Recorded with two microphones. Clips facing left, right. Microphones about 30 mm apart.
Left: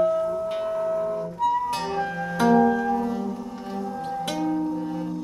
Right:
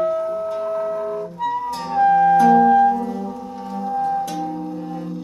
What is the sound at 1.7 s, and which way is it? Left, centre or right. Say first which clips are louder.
Flute: right 1 dB; left.